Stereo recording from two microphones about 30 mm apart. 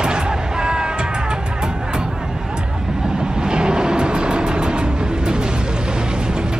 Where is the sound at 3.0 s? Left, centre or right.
Right.